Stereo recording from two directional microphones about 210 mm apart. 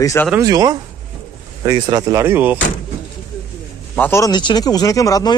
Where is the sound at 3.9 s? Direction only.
10° left (ahead or behind).